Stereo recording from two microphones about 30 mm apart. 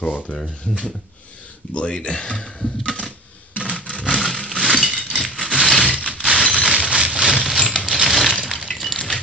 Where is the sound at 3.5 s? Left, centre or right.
Right.